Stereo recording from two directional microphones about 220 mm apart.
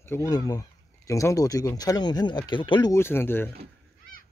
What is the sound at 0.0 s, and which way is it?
Speech, 10° left (ahead or behind).